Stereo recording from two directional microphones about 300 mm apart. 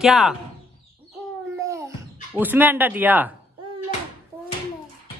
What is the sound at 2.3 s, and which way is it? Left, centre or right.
Speech, centre.